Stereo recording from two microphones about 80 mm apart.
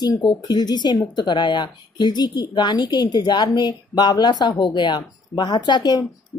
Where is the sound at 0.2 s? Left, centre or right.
Left.